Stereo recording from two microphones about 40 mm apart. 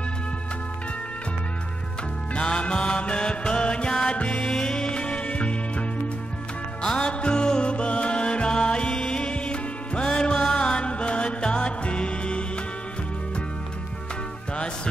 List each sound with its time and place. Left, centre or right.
2.3 s music: left